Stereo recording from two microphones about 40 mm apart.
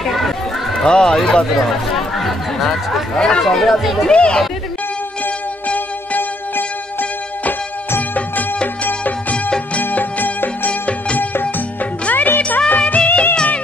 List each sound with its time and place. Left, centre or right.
0.0 s run: centre
0.8 s speech: centre
1.7 s speech: centre
3.2 s speech: centre
3.4 s speech: centre
4.1 s speech: left
6.1 s music: left
9.8 s music: left
10.7 s music: left
12.1 s music: left
12.8 s music of bollywood: left